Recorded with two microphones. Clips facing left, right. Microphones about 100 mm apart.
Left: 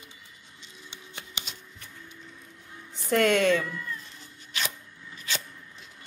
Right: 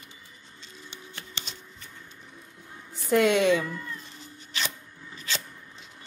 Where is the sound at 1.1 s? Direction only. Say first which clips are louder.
Left 1 dB; 10° left (ahead or behind).